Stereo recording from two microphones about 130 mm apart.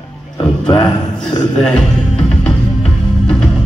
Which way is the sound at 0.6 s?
5° left (ahead or behind).